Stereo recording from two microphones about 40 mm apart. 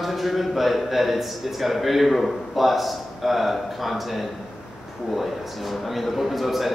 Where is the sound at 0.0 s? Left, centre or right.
Centre.